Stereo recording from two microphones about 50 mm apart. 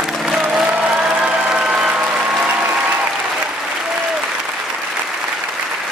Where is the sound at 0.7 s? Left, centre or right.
Centre.